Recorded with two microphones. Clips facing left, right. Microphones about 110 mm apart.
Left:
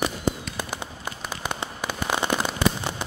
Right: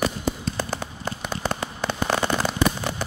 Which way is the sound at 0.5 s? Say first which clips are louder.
Right 3 dB; 15° left (ahead or behind).